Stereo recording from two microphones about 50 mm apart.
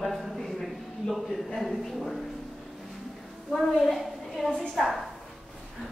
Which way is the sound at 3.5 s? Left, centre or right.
Centre.